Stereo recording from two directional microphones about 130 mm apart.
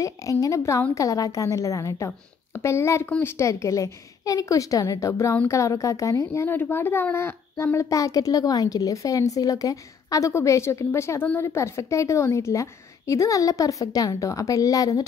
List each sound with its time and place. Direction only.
0.0 s a woman's voice: 25° left (ahead or behind)